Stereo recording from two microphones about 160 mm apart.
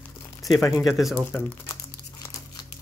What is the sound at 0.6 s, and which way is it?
Speech, 20° left (ahead or behind).